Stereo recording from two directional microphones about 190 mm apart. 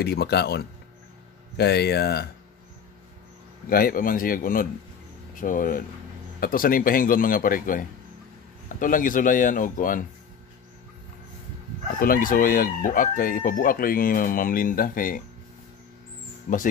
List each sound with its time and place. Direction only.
0.0 s speech: 55° left (ahead or behind)
3.6 s chicken: 50° left (ahead or behind)
12.0 s chicken: 50° left (ahead or behind)